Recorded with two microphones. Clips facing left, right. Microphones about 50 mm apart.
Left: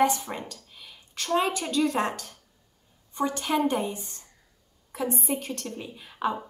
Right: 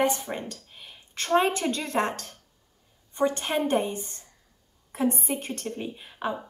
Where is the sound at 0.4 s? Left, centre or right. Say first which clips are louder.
Right 2 dB; right.